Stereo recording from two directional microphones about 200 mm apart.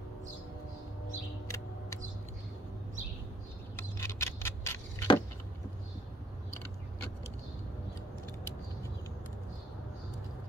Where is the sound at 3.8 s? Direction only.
15° left (ahead or behind).